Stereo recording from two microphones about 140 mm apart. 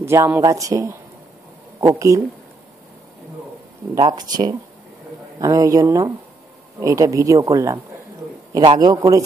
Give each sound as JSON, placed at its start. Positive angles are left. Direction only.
{"t": 0.0, "sound": "speech", "side_deg": -20}
{"t": 4.1, "sound": "speech", "side_deg": -30}